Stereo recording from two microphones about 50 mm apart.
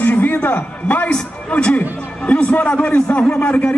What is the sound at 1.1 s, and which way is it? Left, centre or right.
A man's voice, left.